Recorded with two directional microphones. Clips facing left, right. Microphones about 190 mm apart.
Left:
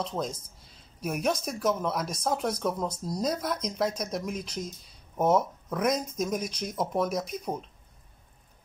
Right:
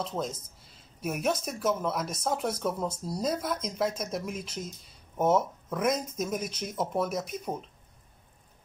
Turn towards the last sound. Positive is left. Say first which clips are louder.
# left 2 dB
turn(degrees=-5)  # may be behind; listen again after turning